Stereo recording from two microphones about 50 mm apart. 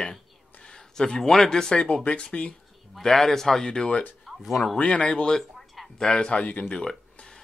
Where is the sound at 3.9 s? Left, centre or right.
Left.